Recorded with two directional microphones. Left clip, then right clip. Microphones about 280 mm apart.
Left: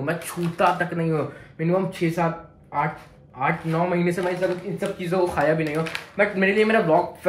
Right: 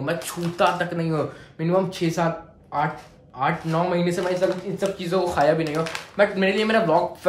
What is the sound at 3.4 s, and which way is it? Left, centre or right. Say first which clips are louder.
Speech: even; centre.